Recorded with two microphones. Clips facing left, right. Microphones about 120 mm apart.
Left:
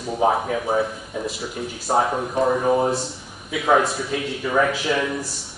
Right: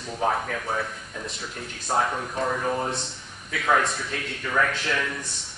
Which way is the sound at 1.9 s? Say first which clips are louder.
Left 5 dB; 20° left (ahead or behind).